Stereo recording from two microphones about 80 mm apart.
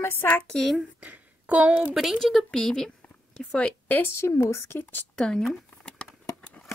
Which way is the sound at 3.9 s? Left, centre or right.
Left.